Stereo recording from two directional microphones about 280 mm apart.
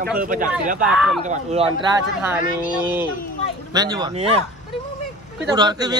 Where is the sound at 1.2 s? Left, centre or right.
Right.